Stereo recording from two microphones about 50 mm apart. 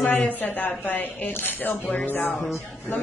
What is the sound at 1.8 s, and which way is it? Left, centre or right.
Music, left.